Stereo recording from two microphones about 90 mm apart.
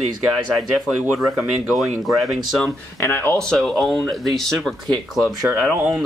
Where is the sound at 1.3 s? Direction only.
5° right (ahead or behind).